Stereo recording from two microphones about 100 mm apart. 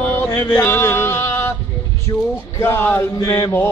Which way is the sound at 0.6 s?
25° left (ahead or behind).